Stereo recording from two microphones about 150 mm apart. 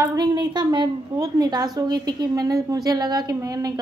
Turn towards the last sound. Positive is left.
turn(degrees=-25)  # may be behind; listen again after turning